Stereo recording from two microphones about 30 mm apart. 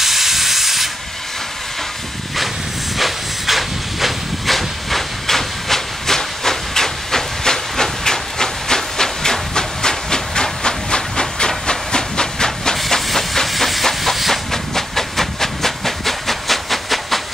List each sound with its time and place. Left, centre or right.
0.0 s hiss: centre
3.0 s hiss: centre; by 12.7 s left
12.9 s steam: centre
14.1 s train: centre
14.5 s steam: centre